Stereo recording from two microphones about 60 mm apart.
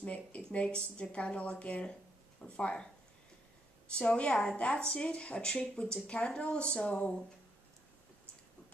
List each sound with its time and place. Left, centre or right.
0.0 s a woman's voice: left
3.9 s speech: centre